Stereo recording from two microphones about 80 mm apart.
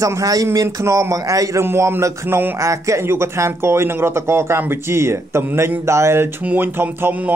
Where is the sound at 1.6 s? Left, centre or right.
Right.